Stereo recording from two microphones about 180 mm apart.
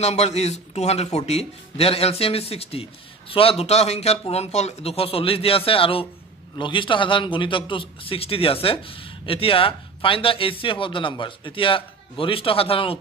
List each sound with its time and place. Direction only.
0.0 s a man's voice: 35° left (ahead or behind)